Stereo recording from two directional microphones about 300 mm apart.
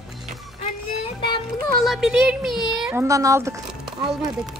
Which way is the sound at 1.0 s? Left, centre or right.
Centre.